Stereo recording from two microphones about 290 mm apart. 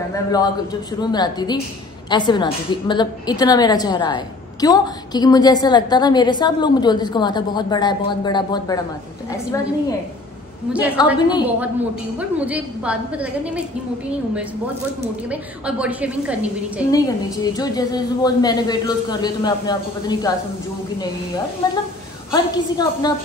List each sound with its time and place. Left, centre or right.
0.1 s a woman's voice: centre
11.1 s a woman's voice: centre
12.2 s a woman's voice: centre
15.2 s a woman's voice: centre
16.9 s a woman's voice: centre
22.3 s a woman's voice: centre